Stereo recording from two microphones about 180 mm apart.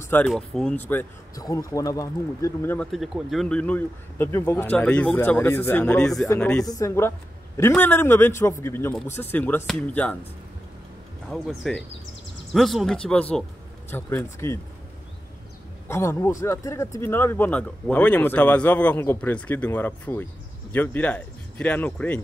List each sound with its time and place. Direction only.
0.1 s speech: 5° left (ahead or behind)
2.9 s speech: centre (ahead or behind)
6.6 s speech: 20° left (ahead or behind)
11.2 s speech: centre (ahead or behind)
15.9 s speech: 15° left (ahead or behind)